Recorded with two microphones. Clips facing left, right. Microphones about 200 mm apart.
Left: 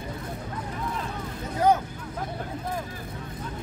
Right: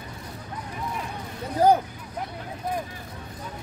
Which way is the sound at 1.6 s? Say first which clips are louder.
Right 3 dB; 35° right (ahead or behind).